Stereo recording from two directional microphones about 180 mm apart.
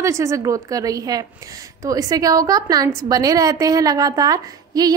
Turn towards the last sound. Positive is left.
turn(degrees=-20)  # may be behind; listen again after turning